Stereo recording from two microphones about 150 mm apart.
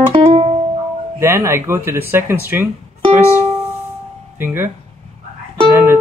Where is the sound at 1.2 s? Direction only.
15° right (ahead or behind).